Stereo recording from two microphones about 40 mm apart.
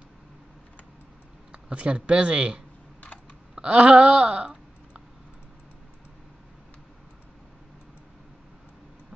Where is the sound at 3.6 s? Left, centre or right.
Right.